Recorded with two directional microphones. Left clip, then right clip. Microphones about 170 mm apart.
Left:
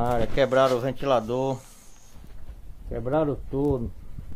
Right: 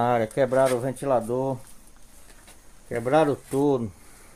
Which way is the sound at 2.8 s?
25° right (ahead or behind).